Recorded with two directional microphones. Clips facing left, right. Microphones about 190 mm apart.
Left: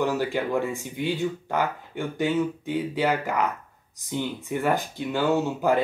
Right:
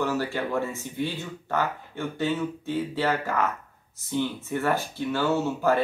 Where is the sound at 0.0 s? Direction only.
15° left (ahead or behind).